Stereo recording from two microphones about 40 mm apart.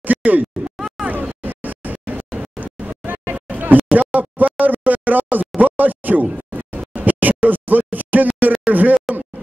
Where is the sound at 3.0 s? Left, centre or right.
Right.